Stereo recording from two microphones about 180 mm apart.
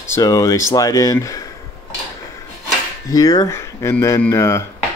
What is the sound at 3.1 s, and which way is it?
Speech, 20° left (ahead or behind).